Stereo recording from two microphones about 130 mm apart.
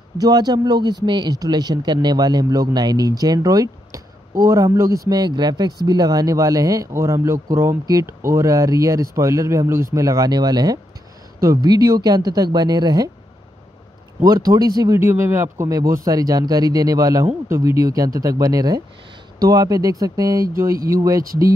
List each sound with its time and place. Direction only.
0.2 s speech: 30° right (ahead or behind)
14.2 s speech: 30° right (ahead or behind)
15.0 s speech: 20° right (ahead or behind)